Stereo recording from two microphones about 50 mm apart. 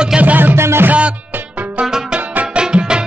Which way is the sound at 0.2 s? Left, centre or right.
Right.